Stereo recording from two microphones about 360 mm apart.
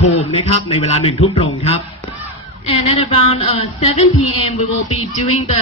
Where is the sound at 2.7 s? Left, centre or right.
Centre.